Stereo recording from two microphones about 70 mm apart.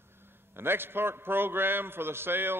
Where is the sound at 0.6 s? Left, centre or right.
Right.